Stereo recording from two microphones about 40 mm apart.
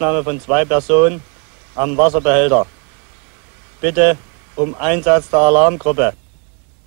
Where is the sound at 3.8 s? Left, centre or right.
Right.